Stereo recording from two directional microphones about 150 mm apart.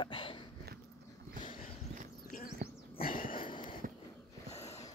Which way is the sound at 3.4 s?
35° left (ahead or behind).